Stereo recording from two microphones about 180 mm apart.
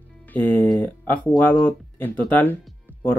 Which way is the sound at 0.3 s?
10° left (ahead or behind).